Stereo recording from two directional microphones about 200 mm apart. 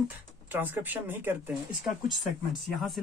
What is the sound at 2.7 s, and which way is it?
Speech, centre (ahead or behind).